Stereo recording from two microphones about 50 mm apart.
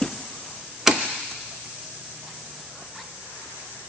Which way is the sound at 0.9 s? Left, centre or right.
Centre.